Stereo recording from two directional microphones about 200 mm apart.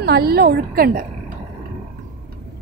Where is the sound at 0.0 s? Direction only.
50° right (ahead or behind).